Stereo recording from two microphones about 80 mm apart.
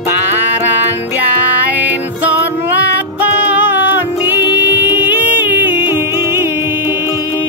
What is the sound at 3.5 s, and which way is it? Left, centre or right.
Music, right.